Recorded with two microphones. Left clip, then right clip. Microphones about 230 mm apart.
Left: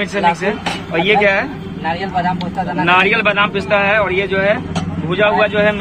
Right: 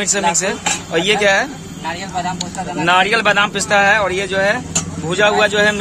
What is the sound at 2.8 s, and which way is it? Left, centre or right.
Speech, right.